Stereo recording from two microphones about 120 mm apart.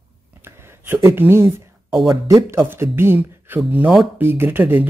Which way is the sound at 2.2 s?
25° right (ahead or behind).